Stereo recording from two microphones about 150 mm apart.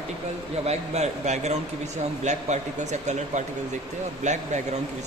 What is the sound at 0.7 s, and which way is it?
Speech, 45° right (ahead or behind).